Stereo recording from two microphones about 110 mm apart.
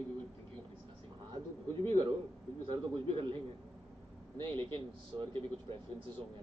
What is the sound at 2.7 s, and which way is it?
Speech, 55° right (ahead or behind).